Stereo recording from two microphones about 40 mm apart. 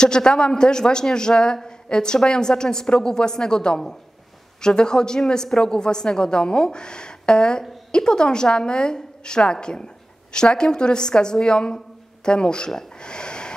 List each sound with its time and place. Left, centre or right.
0.0 s a man's voice: centre